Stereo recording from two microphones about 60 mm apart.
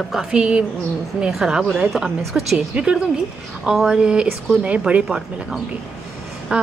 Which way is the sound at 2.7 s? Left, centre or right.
Centre.